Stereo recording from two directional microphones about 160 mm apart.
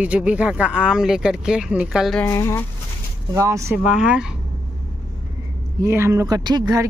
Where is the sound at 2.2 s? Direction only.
15° left (ahead or behind).